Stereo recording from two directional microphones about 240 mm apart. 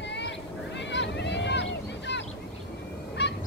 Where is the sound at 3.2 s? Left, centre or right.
Left.